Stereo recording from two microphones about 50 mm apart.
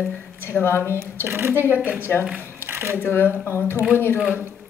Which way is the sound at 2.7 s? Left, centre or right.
Right.